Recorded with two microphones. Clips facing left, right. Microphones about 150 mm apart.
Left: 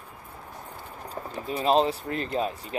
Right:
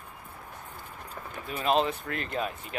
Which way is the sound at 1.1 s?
35° left (ahead or behind).